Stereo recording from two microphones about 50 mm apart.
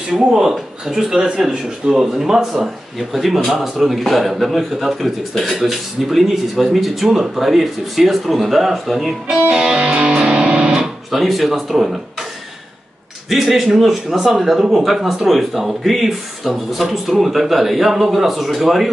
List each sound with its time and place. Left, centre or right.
0.2 s a man's voice: centre
9.3 s speech: right
9.7 s music: right
11.1 s speech: centre
13.3 s a man's voice: centre